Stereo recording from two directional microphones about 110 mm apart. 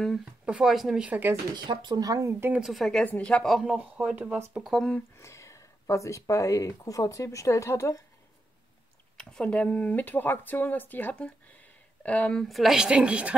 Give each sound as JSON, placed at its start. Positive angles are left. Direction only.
{"t": 0.0, "sound": "a woman's voice", "side_deg": 0}
{"t": 1.5, "sound": "speech", "side_deg": -45}
{"t": 2.6, "sound": "speech", "side_deg": 0}
{"t": 3.5, "sound": "speech", "side_deg": -10}
{"t": 4.6, "sound": "a woman's voice", "side_deg": 0}
{"t": 5.1, "sound": "speech", "side_deg": 25}
{"t": 9.1, "sound": "a woman's voice", "side_deg": 10}